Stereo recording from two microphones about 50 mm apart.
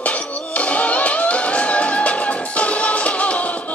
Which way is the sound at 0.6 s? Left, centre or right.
Left.